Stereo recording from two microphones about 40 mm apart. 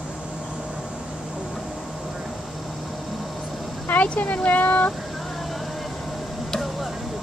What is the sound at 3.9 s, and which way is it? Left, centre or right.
Speech, left.